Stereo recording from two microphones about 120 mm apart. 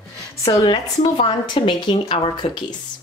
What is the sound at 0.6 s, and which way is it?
A woman's voice, 40° left (ahead or behind).